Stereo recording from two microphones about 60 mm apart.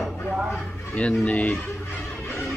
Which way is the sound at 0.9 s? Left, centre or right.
Left.